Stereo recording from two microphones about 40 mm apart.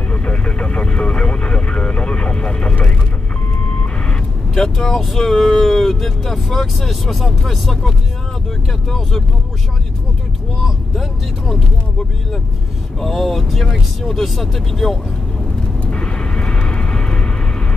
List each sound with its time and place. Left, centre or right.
0.1 s vehicle: left
4.7 s speech: centre
13.0 s speech: centre
15.9 s vehicle: left